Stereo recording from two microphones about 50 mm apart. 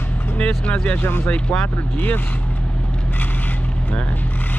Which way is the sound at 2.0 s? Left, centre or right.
Left.